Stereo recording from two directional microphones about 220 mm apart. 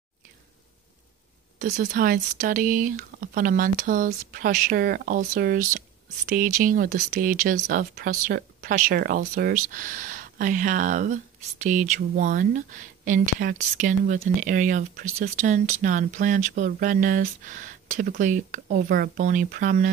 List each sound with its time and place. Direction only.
1.6 s speech: 35° right (ahead or behind)